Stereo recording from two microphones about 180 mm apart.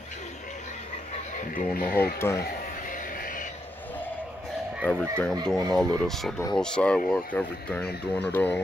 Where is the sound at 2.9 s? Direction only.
50° left (ahead or behind).